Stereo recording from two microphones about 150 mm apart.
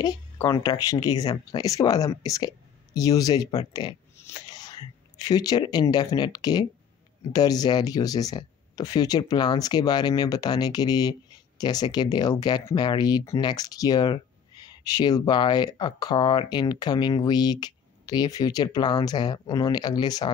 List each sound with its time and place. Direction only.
0.0 s speech: 25° left (ahead or behind)